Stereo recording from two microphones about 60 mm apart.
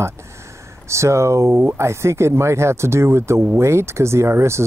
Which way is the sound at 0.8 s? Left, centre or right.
Right.